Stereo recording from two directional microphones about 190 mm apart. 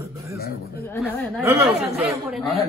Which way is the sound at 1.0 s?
15° right (ahead or behind).